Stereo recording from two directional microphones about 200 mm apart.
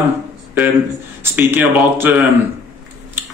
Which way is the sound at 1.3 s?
10° right (ahead or behind).